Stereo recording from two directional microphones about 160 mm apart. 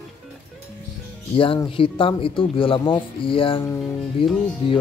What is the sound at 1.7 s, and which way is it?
Speech, 35° left (ahead or behind).